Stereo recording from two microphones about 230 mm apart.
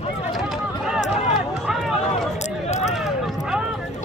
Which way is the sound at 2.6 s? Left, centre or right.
Left.